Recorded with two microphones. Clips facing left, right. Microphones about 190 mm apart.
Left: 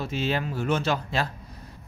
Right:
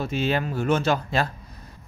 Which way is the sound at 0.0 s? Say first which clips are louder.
Right 3 dB; 55° right (ahead or behind).